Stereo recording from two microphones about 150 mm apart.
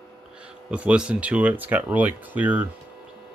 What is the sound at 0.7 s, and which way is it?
Speech, 5° right (ahead or behind).